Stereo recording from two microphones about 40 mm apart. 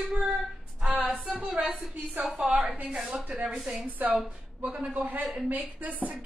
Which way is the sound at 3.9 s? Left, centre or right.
Right.